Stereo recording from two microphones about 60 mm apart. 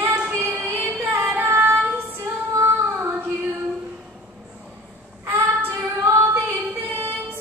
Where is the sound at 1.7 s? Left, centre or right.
Right.